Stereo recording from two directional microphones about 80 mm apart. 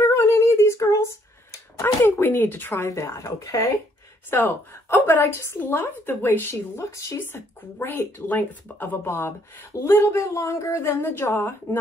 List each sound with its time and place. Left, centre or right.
0.0 s a sound: left
1.8 s speech: left
2.7 s speech: left
4.3 s a woman's voice: left